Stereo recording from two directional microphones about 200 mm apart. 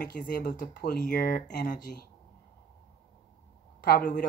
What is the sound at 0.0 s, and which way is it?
Speech, 50° left (ahead or behind).